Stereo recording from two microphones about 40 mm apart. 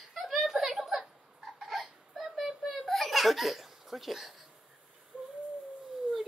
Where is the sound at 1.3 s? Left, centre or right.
Centre.